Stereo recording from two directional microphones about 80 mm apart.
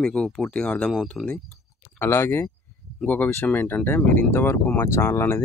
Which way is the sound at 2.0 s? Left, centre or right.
Left.